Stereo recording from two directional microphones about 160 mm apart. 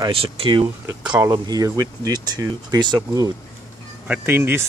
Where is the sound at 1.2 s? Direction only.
20° right (ahead or behind).